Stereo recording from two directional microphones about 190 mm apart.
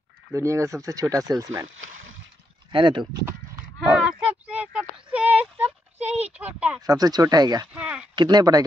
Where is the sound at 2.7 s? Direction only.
25° right (ahead or behind).